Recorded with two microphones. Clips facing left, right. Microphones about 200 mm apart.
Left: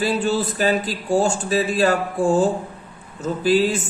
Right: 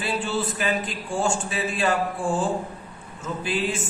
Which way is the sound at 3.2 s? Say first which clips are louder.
Left 9 dB; 35° left (ahead or behind).